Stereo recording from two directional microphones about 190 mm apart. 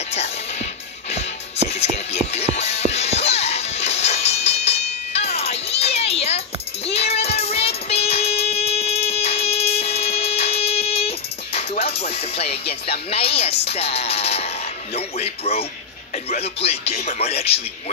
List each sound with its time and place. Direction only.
0.1 s music: 35° left (ahead or behind)
1.7 s music: 35° left (ahead or behind)
13.1 s speech: 30° left (ahead or behind)